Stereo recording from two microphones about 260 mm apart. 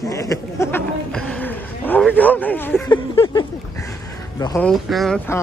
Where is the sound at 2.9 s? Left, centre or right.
Centre.